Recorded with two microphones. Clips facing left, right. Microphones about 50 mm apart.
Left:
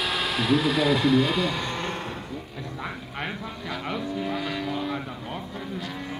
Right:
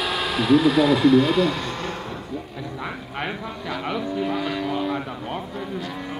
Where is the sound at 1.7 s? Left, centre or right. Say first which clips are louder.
Right 1 dB; left.